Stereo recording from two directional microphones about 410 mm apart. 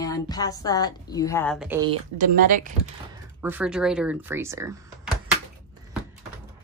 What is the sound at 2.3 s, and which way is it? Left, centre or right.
Speech, centre.